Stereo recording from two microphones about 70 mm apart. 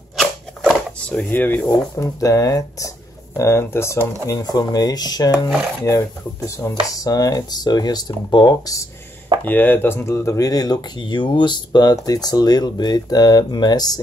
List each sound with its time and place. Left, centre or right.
0.2 s a sound: centre
0.9 s a sound: centre
1.3 s speech: left
2.0 s speech: left
3.3 s speech: left
4.3 s speech: left
5.3 s speech: centre
6.5 s speech: left
9.4 s speech: left